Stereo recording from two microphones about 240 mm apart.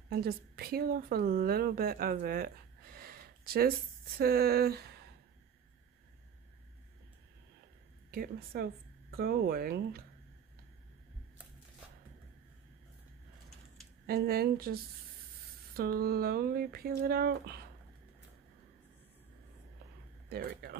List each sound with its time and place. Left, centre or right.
0.1 s a woman's voice: right
8.1 s speech: right
14.0 s speech: right
20.2 s speech: right